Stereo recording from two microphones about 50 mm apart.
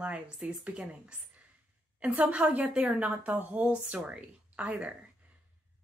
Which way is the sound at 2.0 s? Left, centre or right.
Right.